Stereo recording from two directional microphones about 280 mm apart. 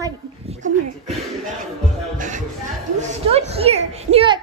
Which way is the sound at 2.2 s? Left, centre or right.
Right.